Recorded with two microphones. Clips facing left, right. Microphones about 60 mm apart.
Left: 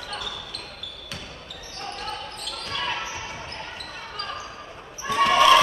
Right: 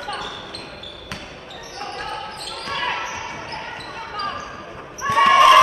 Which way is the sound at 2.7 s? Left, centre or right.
Right.